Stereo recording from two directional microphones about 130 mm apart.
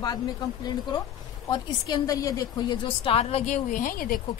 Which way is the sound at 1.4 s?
30° left (ahead or behind).